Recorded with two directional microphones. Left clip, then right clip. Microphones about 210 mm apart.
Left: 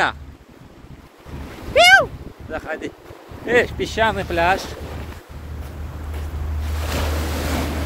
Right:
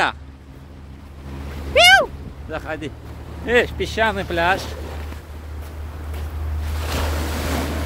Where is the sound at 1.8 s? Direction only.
15° right (ahead or behind).